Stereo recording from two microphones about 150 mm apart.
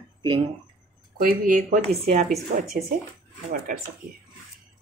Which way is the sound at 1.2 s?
70° right (ahead or behind).